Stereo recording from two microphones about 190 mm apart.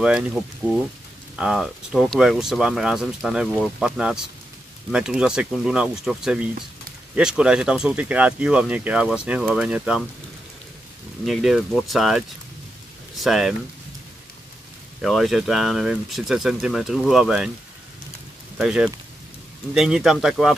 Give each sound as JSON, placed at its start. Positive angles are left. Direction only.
{"t": 0.0, "sound": "speech", "side_deg": -5}
{"t": 11.2, "sound": "speech", "side_deg": 0}
{"t": 13.2, "sound": "speech", "side_deg": 0}
{"t": 15.0, "sound": "speech", "side_deg": 0}
{"t": 18.6, "sound": "speech", "side_deg": -5}